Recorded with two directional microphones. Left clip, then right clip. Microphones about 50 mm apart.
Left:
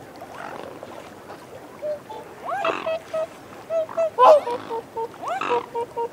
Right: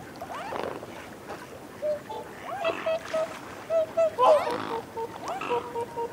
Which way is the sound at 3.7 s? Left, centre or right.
Centre.